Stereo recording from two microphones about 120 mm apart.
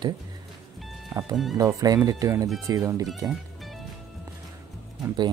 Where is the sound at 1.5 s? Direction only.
30° right (ahead or behind).